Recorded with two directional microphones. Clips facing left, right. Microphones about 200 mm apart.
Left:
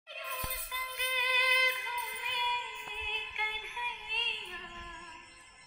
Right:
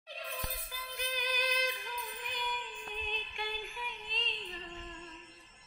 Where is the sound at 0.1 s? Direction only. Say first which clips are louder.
Right 1 dB; 35° right (ahead or behind).